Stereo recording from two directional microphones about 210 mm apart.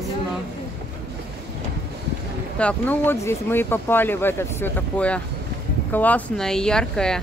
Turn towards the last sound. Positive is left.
turn(degrees=5)  # may be behind; listen again after turning